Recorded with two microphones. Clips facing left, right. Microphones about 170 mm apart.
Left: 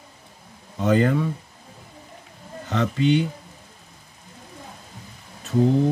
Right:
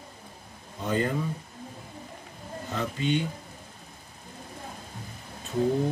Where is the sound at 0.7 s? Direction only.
80° left.